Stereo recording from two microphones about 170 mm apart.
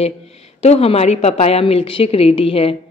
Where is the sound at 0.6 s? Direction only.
35° left (ahead or behind).